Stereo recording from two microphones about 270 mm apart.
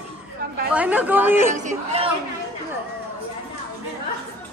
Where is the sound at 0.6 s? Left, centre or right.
Centre.